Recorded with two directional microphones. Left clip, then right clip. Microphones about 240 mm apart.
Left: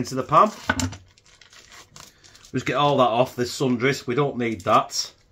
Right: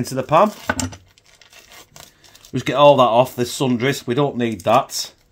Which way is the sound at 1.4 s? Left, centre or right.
Centre.